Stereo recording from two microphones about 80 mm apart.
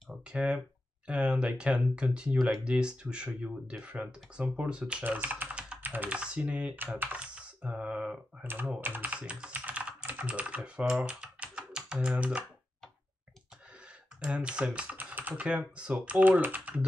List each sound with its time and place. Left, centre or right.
0.1 s clicking: centre
1.0 s speech: centre
5.0 s typing: right
5.8 s speech: right
8.5 s speech: right
14.2 s speech: centre